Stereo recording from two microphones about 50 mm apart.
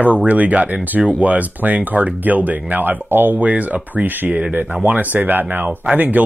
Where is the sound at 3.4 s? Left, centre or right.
Right.